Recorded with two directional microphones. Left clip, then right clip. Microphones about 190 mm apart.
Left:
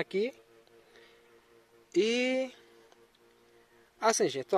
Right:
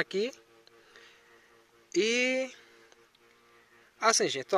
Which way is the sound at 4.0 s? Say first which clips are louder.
Right 1 dB; 10° left (ahead or behind).